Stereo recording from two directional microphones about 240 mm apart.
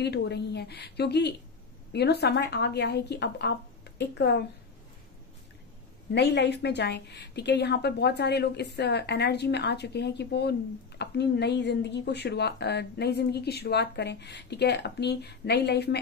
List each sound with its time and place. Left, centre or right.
0.0 s speech: left
6.1 s speech: left